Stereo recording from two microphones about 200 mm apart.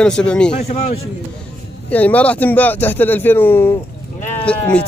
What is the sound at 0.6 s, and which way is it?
Speech, 30° left (ahead or behind).